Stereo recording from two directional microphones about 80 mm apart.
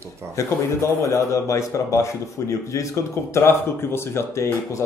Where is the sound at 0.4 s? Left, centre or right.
Left.